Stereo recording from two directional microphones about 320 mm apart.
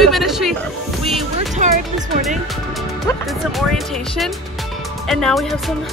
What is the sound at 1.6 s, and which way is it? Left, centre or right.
Music, right.